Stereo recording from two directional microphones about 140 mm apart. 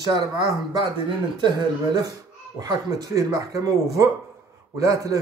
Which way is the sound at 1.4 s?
30° right (ahead or behind).